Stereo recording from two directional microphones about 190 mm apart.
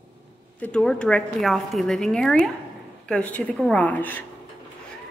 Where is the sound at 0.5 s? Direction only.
5° left (ahead or behind).